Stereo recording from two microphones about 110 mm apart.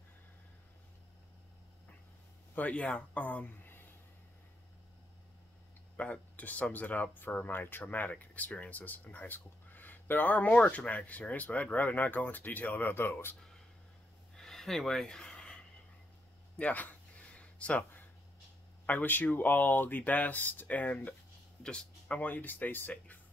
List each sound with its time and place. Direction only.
2.5 s speech: 15° left (ahead or behind)
5.9 s speech: 10° left (ahead or behind)
14.3 s a sound: 5° left (ahead or behind)
18.9 s speech: 15° left (ahead or behind)